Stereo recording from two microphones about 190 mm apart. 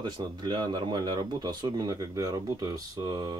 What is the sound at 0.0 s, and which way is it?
Speech, 20° right (ahead or behind).